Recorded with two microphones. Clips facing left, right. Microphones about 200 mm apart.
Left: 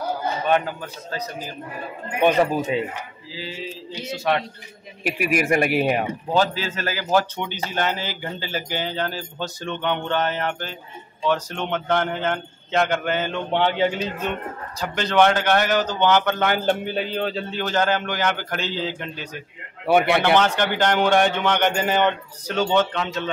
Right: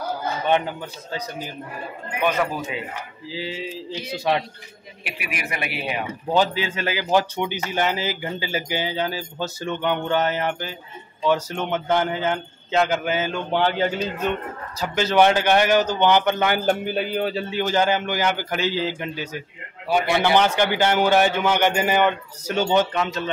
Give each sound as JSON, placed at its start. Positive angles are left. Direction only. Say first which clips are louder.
{"t": 2.1, "sound": "speech", "louder": "left 5 dB", "side_deg": 25}
{"t": 3.3, "sound": "a sound", "louder": "right 3 dB", "side_deg": -20}
{"t": 5.0, "sound": "speech", "louder": "left 10 dB", "side_deg": 45}
{"t": 6.3, "sound": "a man's voice", "louder": "right 1 dB", "side_deg": -15}
{"t": 19.9, "sound": "speech", "louder": "left 3 dB", "side_deg": 60}
{"t": 20.3, "sound": "a man's voice", "louder": "right 1 dB", "side_deg": -10}